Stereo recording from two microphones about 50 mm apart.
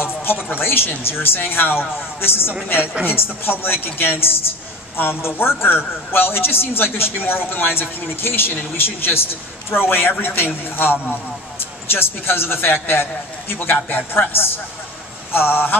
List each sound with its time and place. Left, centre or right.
0.5 s a man's voice: left